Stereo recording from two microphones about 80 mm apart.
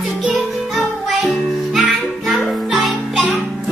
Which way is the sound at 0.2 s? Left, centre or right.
Centre.